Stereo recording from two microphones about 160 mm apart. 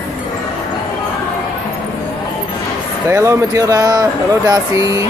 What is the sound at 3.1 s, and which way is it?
Speech, 20° right (ahead or behind).